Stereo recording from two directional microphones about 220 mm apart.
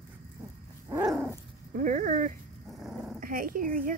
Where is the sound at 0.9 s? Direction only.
5° right (ahead or behind).